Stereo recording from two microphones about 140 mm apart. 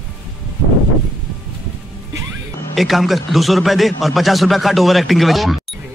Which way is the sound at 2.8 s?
Centre (ahead or behind).